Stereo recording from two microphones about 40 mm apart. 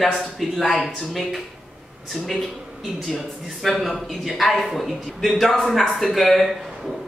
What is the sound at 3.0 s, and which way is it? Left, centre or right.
A man's voice, centre.